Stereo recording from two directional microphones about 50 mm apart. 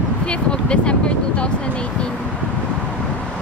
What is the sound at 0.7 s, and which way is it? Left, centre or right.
Speech, left.